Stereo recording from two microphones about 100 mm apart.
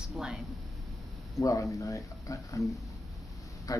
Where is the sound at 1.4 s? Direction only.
30° left (ahead or behind).